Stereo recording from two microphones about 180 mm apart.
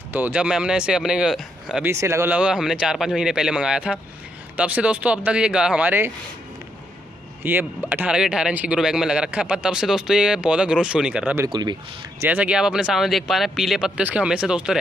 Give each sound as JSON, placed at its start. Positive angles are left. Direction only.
{"t": 0.1, "sound": "speech", "side_deg": -10}
{"t": 1.9, "sound": "speech", "side_deg": -15}
{"t": 7.4, "sound": "speech", "side_deg": -10}
{"t": 11.4, "sound": "speech", "side_deg": -25}
{"t": 12.2, "sound": "speech", "side_deg": -10}